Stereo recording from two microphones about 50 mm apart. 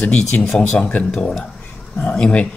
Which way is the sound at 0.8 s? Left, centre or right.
Left.